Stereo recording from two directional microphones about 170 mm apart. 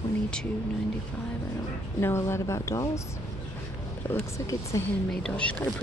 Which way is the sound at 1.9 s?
15° left (ahead or behind).